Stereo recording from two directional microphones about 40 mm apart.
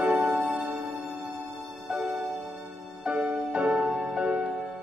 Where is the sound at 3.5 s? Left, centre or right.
Right.